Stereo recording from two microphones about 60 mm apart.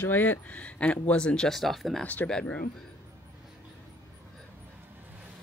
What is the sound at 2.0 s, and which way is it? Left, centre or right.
Speech, left.